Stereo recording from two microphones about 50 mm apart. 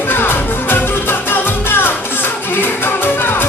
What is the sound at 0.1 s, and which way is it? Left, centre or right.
Music, left.